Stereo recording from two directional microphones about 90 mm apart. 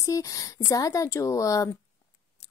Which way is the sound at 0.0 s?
40° left (ahead or behind).